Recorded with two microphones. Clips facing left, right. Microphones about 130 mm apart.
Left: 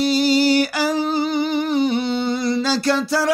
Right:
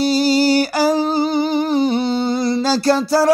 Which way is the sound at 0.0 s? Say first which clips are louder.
Right 2 dB; 35° right (ahead or behind).